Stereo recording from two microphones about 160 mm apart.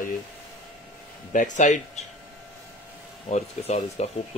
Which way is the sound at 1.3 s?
50° left (ahead or behind).